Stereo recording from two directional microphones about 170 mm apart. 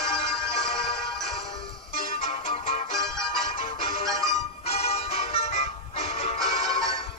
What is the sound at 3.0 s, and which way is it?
Music, 5° left (ahead or behind).